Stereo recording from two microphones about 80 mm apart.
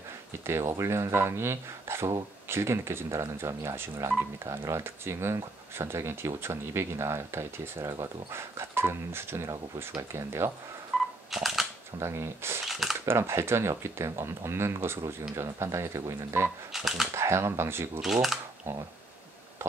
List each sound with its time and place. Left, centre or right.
0.5 s speech: right
10.9 s camera: centre
12.0 s speech: right
12.6 s a sound: centre
13.0 s speech: right
16.7 s speech: centre
17.1 s speech: right
18.0 s speech: centre
18.7 s speech: right
19.6 s a sound: right